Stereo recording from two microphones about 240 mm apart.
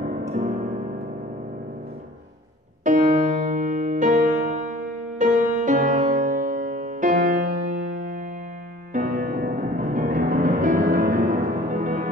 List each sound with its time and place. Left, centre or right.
2.8 s music: right